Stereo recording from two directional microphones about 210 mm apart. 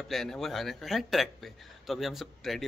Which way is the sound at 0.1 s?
Centre (ahead or behind).